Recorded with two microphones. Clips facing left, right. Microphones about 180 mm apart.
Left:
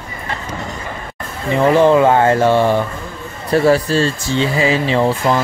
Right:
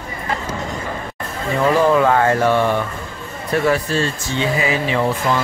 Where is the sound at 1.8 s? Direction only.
25° left (ahead or behind).